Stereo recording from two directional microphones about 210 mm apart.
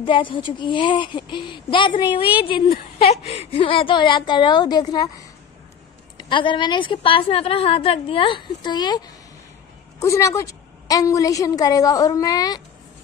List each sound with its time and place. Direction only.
0.0 s a woman's voice: 25° left (ahead or behind)
6.1 s a woman's voice: 20° left (ahead or behind)